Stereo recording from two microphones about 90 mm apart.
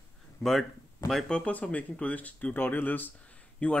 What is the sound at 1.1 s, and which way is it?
Speech, 5° left (ahead or behind).